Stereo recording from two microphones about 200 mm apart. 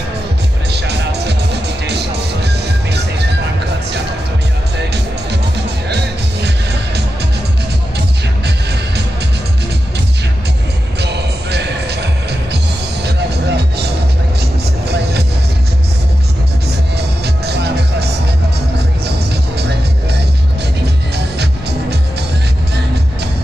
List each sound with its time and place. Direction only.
0.7 s music: 55° right (ahead or behind)
2.4 s music: 55° right (ahead or behind)
4.7 s music: 55° right (ahead or behind)
11.0 s music: 55° right (ahead or behind)
16.9 s music: 55° right (ahead or behind)